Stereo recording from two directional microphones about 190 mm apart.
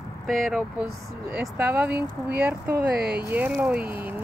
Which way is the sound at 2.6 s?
55° right (ahead or behind).